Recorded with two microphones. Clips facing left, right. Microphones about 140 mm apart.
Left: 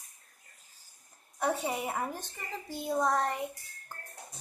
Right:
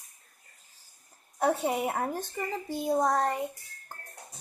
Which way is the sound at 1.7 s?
45° right (ahead or behind).